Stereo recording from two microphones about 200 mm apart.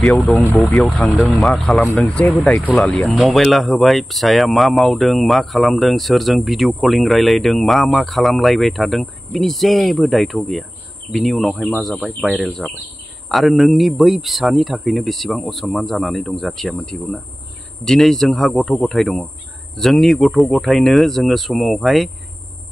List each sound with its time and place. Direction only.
0.5 s speech: 10° left (ahead or behind)